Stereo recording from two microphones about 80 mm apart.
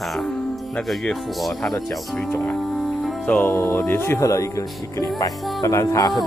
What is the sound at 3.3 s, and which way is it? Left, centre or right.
Speech, centre.